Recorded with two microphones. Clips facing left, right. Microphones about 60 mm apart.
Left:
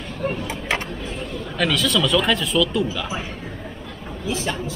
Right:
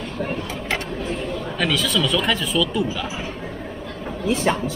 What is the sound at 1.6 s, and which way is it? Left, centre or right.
Speech, centre.